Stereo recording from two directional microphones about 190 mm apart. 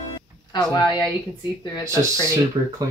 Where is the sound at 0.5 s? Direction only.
20° left (ahead or behind).